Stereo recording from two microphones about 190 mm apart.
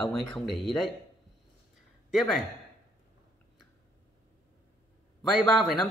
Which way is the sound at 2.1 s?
Centre (ahead or behind).